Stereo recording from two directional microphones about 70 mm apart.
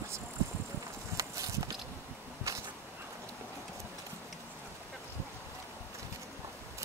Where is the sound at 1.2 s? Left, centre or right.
Right.